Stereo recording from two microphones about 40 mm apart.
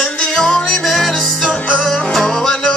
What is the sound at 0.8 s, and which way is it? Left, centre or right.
Music, centre.